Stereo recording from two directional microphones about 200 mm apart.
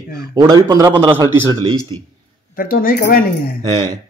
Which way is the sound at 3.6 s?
20° right (ahead or behind).